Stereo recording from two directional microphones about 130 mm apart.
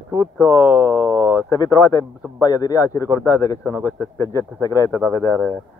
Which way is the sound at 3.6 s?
20° right (ahead or behind).